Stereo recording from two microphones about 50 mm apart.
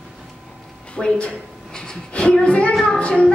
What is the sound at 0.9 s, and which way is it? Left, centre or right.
A woman's voice, left.